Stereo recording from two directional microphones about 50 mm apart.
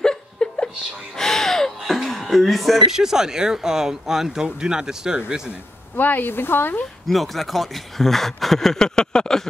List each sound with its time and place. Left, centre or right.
0.0 s chuckle: centre
1.1 s speech: centre
5.9 s speech: left
7.1 s speech: centre